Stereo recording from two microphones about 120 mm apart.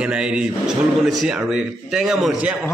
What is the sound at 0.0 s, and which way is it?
A man's voice, 10° right (ahead or behind).